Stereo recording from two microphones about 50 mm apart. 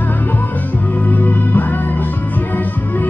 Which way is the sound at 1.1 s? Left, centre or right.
Left.